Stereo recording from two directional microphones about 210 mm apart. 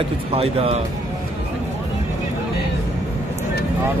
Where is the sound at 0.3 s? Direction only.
30° right (ahead or behind).